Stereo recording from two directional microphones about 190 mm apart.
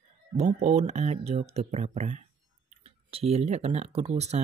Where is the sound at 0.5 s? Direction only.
35° right (ahead or behind).